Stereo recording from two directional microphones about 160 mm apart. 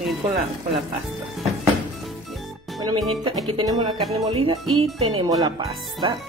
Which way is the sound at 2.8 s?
30° right (ahead or behind).